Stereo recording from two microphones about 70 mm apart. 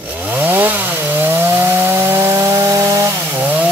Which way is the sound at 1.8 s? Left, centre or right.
Right.